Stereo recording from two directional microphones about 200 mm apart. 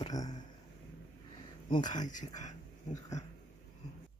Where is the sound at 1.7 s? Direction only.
20° left (ahead or behind).